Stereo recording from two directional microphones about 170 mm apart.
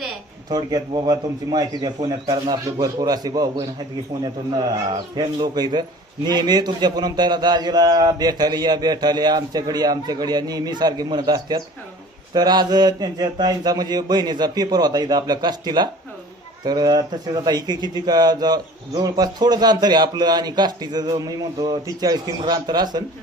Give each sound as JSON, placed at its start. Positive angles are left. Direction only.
{"t": 0.5, "sound": "speech", "side_deg": -25}